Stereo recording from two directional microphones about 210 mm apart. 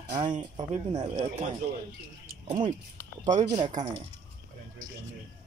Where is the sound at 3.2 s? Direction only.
35° right (ahead or behind).